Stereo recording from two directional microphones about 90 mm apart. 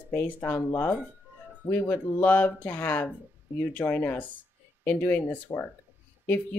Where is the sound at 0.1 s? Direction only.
20° left (ahead or behind).